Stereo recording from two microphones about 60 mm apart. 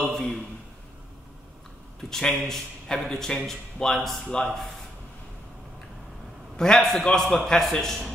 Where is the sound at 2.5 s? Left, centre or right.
Centre.